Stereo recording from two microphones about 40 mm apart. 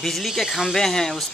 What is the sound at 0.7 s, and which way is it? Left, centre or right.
Speech, centre.